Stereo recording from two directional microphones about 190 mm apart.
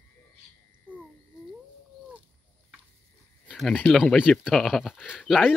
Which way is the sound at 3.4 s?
Centre (ahead or behind).